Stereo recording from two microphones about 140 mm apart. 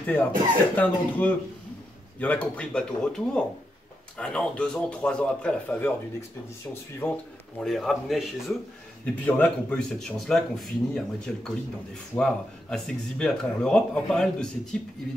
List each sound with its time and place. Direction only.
0.0 s a man's voice: 10° left (ahead or behind)
7.0 s a man's voice: 15° left (ahead or behind)
7.6 s speech: centre (ahead or behind)
9.2 s speech: 10° left (ahead or behind)